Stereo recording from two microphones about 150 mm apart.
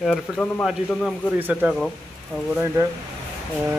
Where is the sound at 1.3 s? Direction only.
10° right (ahead or behind).